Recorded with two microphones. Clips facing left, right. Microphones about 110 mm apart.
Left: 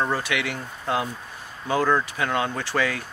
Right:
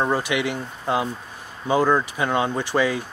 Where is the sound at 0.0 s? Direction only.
15° right (ahead or behind).